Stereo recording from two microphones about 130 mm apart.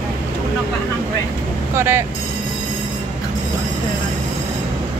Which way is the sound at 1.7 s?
20° right (ahead or behind).